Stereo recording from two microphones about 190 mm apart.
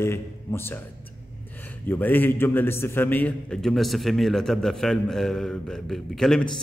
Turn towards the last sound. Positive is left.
turn(degrees=0)  # may be behind; listen again after turning